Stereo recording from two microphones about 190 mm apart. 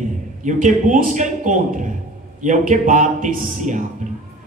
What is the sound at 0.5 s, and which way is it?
A man's voice, 40° right (ahead or behind).